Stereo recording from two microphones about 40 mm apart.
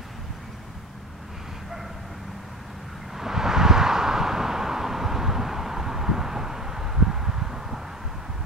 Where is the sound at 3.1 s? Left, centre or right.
Centre.